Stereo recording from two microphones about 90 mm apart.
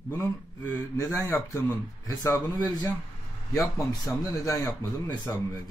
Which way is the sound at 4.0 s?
35° left (ahead or behind).